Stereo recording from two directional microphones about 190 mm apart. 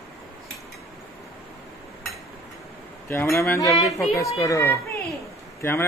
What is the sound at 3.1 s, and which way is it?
A man's voice, 15° left (ahead or behind).